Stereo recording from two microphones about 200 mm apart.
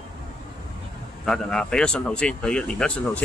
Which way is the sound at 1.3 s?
5° left (ahead or behind).